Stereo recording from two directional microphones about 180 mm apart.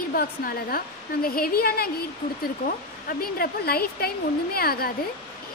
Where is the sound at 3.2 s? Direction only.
55° left (ahead or behind).